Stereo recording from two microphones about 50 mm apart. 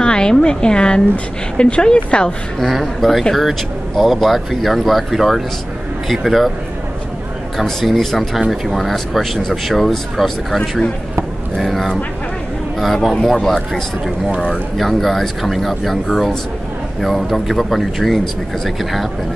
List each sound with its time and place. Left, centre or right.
0.0 s a woman's voice: centre
2.6 s speech: centre
7.5 s a woman's voice: centre